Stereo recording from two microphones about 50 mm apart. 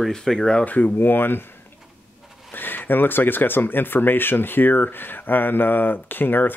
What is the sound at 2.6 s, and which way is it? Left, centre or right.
Speech, left.